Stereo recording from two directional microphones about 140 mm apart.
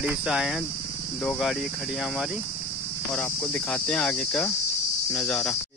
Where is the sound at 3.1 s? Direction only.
10° left (ahead or behind).